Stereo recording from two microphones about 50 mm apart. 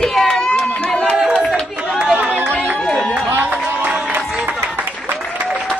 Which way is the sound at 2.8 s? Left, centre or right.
Centre.